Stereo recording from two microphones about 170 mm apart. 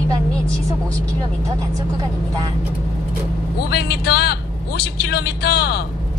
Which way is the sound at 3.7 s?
75° left (ahead or behind).